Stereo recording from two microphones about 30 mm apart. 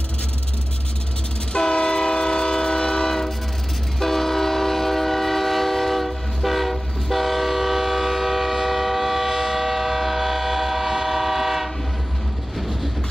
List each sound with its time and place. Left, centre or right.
1.6 s train: left; by 11.7 s centre
12.5 s vehicle: centre